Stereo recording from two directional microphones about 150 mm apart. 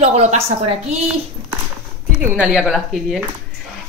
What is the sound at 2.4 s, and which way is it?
Speech, 5° right (ahead or behind).